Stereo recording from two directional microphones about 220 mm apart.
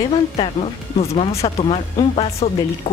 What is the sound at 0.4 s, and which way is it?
Speech, 25° left (ahead or behind).